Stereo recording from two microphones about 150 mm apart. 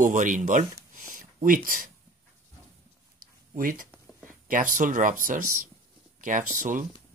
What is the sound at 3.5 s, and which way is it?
Speech, 65° right (ahead or behind).